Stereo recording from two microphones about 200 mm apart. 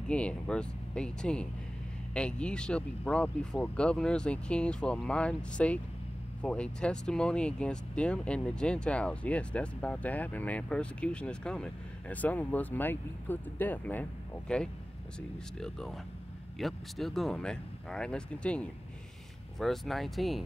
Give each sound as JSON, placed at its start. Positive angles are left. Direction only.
{"t": 0.1, "sound": "speech", "side_deg": 5}